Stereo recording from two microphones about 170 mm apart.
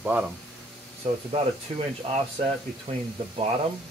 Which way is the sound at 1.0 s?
40° right (ahead or behind).